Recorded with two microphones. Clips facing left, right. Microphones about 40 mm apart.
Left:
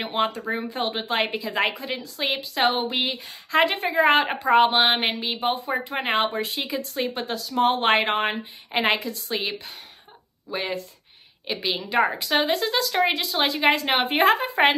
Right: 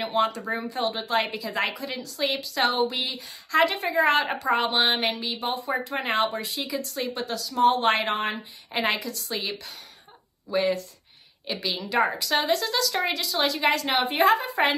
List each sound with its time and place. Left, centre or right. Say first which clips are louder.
0.1 s speech: even; left
10.5 s speech: right 4 dB; left